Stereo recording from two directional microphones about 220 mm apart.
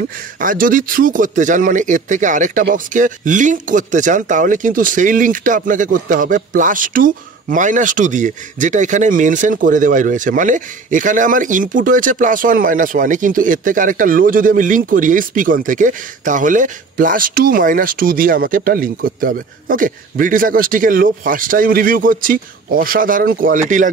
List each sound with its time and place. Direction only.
0.4 s speech: 40° right (ahead or behind)